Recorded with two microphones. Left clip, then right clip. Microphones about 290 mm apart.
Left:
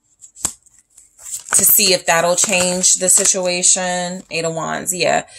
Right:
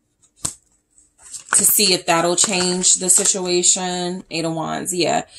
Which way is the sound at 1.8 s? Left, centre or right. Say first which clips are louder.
Left 3 dB; left.